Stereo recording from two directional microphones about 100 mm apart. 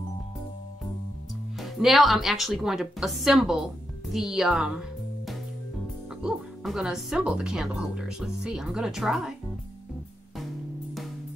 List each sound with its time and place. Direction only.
1.6 s speech: centre (ahead or behind)
6.2 s speech: 5° right (ahead or behind)